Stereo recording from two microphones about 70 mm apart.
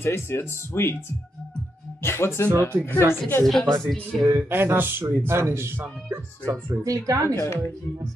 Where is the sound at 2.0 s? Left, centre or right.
Left.